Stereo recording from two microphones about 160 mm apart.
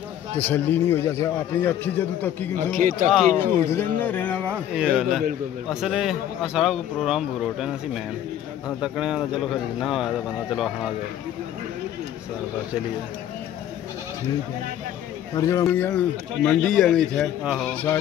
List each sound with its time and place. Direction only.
0.4 s a man's voice: 10° left (ahead or behind)
2.5 s a man's voice: 55° right (ahead or behind)
3.1 s a man's voice: centre (ahead or behind)
3.5 s a man's voice: 15° left (ahead or behind)
4.5 s a man's voice: 10° right (ahead or behind)
15.3 s a man's voice: 20° left (ahead or behind); by 17.3 s 5° left (ahead or behind)